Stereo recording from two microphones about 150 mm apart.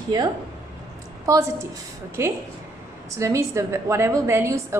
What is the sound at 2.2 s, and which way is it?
A woman's voice, 20° right (ahead or behind).